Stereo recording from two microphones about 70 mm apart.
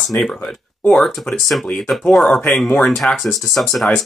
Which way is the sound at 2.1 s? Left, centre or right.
Centre.